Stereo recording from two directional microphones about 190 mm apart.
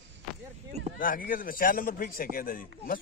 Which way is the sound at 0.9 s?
45° left (ahead or behind).